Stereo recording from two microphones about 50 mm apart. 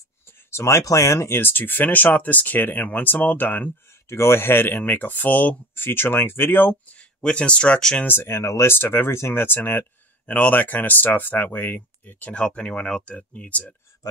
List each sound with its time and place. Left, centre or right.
0.5 s speech: left
1.3 s speech: left
1.6 s speech: left
4.1 s speech: left
5.9 s speech: left
7.2 s speech: left
8.2 s speech: left
12.3 s speech: left